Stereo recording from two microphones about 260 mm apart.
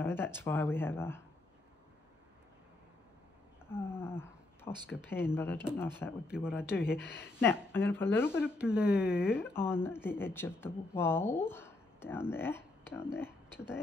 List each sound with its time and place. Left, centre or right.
0.0 s speech: centre
3.7 s speech: centre
6.2 s speech: centre
6.9 s a woman's voice: left
7.3 s speech: centre
8.4 s speech: centre
9.4 s speech: centre